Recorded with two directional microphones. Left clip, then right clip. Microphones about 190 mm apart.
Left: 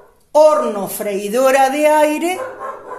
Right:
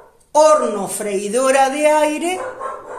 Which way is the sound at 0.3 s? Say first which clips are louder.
Left 1 dB; 30° left (ahead or behind).